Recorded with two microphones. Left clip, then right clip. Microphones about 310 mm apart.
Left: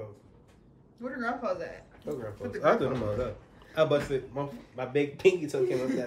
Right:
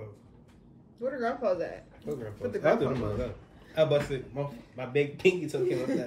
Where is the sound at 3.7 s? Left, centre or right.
Centre.